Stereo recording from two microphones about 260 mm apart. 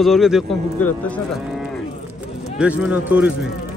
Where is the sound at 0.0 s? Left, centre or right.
Centre.